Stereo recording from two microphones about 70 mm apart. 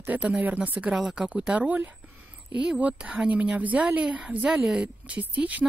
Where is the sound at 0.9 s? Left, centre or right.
Centre.